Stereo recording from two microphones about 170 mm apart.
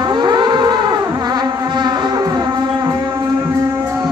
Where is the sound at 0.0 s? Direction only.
25° right (ahead or behind).